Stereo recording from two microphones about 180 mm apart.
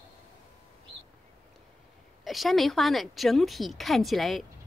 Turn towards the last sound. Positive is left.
turn(degrees=0)  # may be behind; listen again after turning